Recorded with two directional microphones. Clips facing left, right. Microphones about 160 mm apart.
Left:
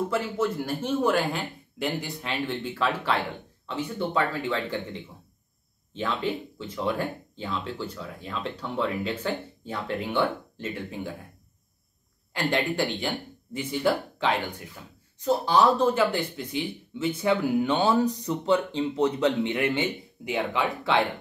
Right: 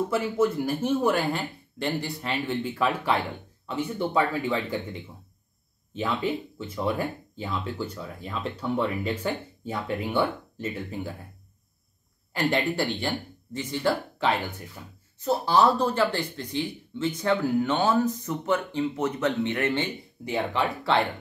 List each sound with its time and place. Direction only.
0.1 s speech: 10° right (ahead or behind)
5.9 s speech: 10° right (ahead or behind)
12.3 s speech: 5° right (ahead or behind)